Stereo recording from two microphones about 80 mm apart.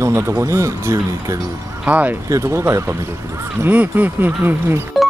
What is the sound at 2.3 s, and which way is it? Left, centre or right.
Speech, right.